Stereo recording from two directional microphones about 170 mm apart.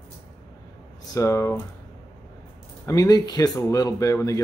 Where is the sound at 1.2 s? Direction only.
15° left (ahead or behind).